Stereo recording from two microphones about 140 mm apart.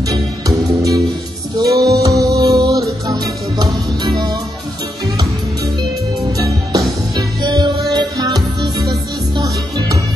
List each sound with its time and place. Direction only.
0.1 s music: 25° right (ahead or behind)
6.3 s music: 25° right (ahead or behind)
9.4 s music: 25° right (ahead or behind)